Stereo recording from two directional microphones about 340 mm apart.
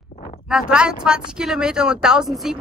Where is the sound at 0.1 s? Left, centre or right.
Left.